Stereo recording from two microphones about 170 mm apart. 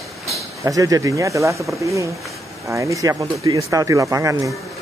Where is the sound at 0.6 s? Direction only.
20° right (ahead or behind).